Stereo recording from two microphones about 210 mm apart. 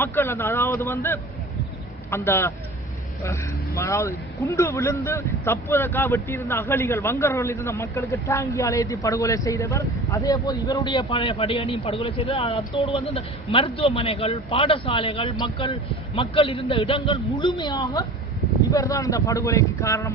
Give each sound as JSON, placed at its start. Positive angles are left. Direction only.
{"t": 0.0, "sound": "a man's voice", "side_deg": 10}